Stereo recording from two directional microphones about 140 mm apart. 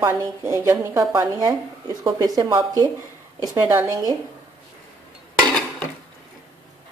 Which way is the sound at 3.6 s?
15° right (ahead or behind).